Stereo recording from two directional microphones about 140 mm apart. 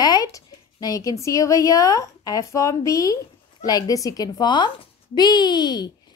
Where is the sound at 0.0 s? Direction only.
25° left (ahead or behind).